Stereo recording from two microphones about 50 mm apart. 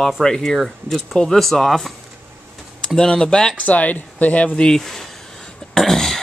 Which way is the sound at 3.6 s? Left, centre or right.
Left.